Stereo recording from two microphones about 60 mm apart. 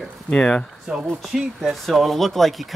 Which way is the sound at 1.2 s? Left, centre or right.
Centre.